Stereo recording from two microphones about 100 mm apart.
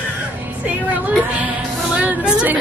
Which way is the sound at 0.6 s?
15° right (ahead or behind).